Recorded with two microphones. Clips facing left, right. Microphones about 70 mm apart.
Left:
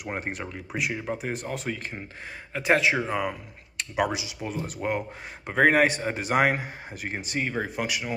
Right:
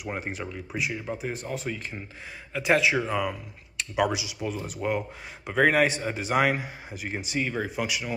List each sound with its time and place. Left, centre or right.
0.0 s speech: left
2.5 s a man's voice: left